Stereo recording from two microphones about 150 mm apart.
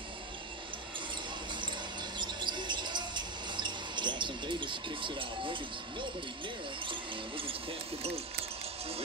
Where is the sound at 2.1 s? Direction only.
30° right (ahead or behind).